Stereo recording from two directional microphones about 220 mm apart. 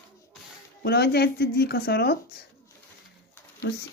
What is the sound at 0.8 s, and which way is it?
Speech, 45° left (ahead or behind).